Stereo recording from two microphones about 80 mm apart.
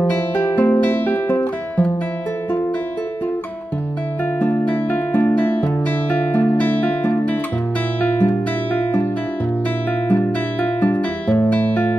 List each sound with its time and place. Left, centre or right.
0.0 s guitar: left
4.4 s music: left
10.0 s music: centre